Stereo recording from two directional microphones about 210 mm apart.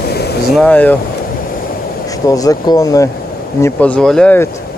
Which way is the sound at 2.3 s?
15° left (ahead or behind).